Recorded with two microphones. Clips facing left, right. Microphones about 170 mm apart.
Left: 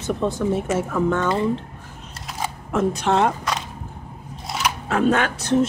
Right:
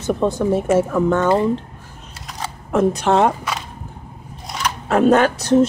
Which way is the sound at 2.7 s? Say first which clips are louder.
Right 4 dB; 40° right (ahead or behind).